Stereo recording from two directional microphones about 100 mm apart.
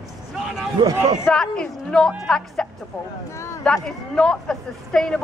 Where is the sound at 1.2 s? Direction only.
10° left (ahead or behind).